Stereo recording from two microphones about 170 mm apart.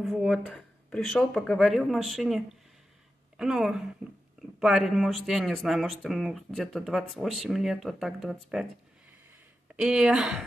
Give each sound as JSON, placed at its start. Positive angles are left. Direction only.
{"t": 0.0, "sound": "speech", "side_deg": 0}
{"t": 9.8, "sound": "speech", "side_deg": -5}